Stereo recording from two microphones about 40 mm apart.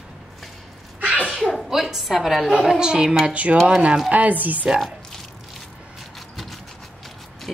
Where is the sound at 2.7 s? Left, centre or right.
Centre.